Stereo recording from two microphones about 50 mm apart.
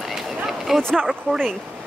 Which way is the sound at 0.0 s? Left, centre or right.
Centre.